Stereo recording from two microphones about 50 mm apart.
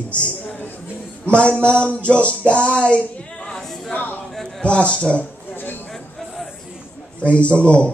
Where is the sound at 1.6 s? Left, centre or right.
Left.